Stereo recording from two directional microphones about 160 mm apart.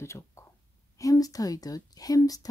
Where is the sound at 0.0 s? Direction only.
15° left (ahead or behind).